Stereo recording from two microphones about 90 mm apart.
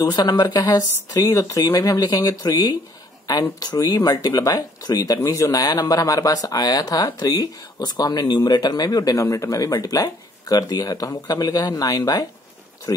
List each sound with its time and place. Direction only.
0.0 s speech: 45° left (ahead or behind)
3.5 s speech: 45° left (ahead or behind)